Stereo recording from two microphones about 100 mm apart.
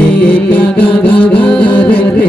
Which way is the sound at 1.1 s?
15° left (ahead or behind).